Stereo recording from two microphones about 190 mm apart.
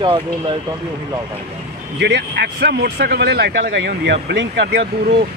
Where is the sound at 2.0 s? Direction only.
65° right (ahead or behind).